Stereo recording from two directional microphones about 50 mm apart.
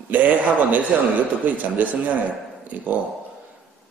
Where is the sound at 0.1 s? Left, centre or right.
Right.